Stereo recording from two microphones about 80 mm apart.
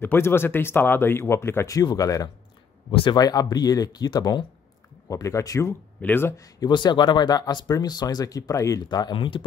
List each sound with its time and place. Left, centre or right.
0.0 s speech: left
1.7 s speech: left
2.9 s speech: left
3.2 s speech: left
5.0 s speech: left
5.9 s speech: left
6.7 s speech: left